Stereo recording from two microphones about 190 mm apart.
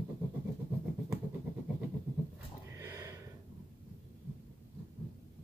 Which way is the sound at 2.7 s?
15° right (ahead or behind).